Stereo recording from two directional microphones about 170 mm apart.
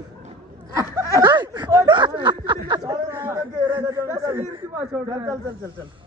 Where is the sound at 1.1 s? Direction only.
25° right (ahead or behind).